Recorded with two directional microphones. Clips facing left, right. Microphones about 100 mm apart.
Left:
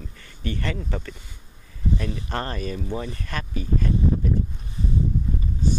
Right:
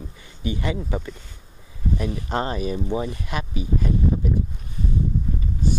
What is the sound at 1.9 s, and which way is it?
Speech, 15° right (ahead or behind).